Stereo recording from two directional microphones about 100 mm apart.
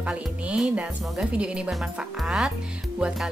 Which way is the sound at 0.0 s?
10° right (ahead or behind).